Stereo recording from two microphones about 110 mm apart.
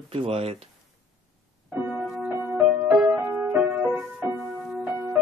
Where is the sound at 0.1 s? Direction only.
60° right (ahead or behind).